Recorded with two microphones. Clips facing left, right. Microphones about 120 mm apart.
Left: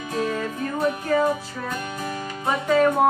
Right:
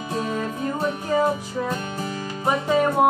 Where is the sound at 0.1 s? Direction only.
20° right (ahead or behind).